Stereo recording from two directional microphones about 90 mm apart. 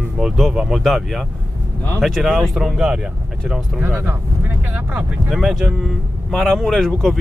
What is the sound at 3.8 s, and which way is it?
Speech, 25° right (ahead or behind).